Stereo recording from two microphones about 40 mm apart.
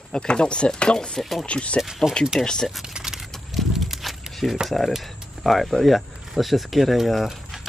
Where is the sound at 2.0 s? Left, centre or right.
Centre.